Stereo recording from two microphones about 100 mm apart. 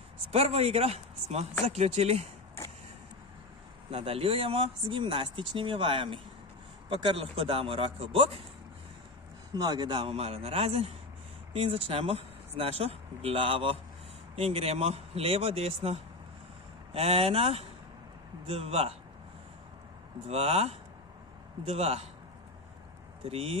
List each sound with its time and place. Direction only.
0.3 s speech: 90° right
3.9 s speech: 70° right (ahead or behind)
9.5 s speech: 45° right (ahead or behind); by 10.9 s 85° right
11.5 s speech: 70° right (ahead or behind)
20.2 s speech: 90° right
23.2 s speech: 80° right